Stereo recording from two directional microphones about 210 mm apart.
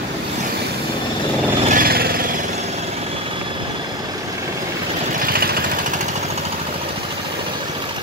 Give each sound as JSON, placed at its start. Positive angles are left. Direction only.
{"t": 1.7, "sound": "vehicle", "side_deg": -45}
{"t": 5.2, "sound": "vehicle", "side_deg": -45}